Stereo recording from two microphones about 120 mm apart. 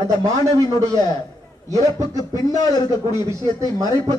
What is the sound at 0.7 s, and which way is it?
Speech, 35° left (ahead or behind).